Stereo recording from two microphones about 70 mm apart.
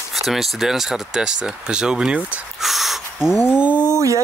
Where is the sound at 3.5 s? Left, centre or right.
Centre.